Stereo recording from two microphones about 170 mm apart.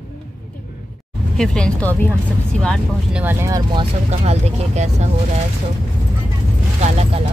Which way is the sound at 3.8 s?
40° right (ahead or behind).